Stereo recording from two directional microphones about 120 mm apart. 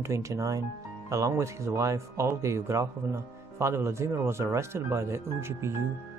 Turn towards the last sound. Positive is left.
turn(degrees=-20)  # may be behind; listen again after turning